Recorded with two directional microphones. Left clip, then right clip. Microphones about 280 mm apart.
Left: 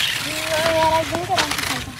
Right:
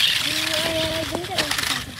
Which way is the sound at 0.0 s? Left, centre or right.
Centre.